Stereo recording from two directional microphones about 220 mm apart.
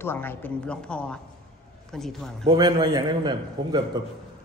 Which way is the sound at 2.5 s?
20° right (ahead or behind).